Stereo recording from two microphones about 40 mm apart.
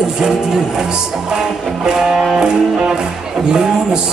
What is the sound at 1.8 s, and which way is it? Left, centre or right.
Speech, centre.